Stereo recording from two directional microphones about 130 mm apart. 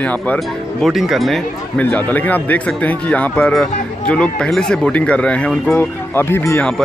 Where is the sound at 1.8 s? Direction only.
15° left (ahead or behind).